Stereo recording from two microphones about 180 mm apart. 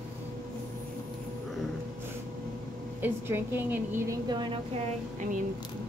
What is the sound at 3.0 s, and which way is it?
A woman's voice, 10° right (ahead or behind).